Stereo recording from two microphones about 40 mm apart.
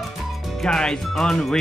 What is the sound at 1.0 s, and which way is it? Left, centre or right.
Speech, centre.